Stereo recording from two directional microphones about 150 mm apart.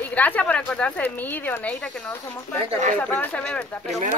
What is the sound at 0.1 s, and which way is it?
Speech, 10° left (ahead or behind).